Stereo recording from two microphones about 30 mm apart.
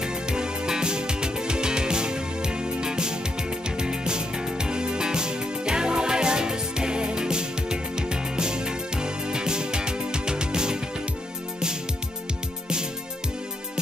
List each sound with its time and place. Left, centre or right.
0.0 s music: right